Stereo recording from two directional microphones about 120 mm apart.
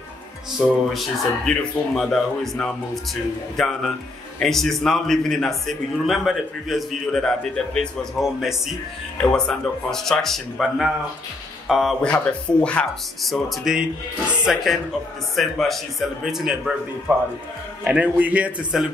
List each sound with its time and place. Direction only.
0.6 s a man's voice: centre (ahead or behind)
17.1 s a man's voice: 20° right (ahead or behind)